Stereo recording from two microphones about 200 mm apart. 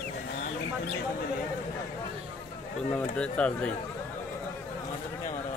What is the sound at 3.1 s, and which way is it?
Speech, 5° left (ahead or behind).